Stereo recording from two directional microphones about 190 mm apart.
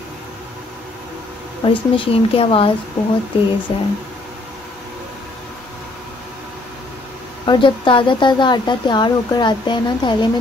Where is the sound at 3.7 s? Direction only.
30° left (ahead or behind).